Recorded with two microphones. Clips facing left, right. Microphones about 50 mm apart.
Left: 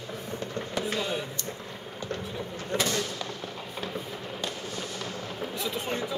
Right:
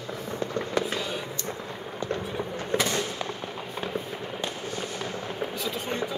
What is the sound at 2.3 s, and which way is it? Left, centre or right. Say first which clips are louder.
Fireworks: right 2 dB; right.